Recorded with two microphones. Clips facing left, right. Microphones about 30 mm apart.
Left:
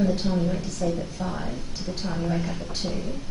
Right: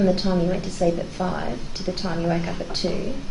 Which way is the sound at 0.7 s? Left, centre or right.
Right.